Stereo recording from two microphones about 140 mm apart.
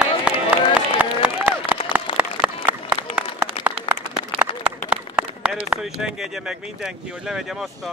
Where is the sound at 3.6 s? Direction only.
40° left (ahead or behind).